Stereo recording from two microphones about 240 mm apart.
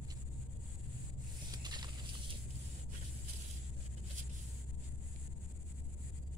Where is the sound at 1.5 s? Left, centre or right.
Centre.